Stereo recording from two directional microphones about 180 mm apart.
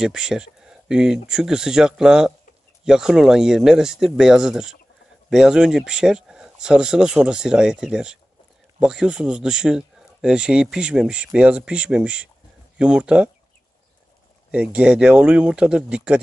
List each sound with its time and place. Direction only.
0.0 s speech: 5° right (ahead or behind)
14.5 s speech: 5° right (ahead or behind)